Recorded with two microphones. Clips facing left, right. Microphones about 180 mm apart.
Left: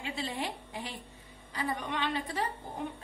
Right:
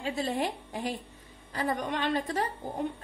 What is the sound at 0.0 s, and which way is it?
A woman's voice, 45° right (ahead or behind).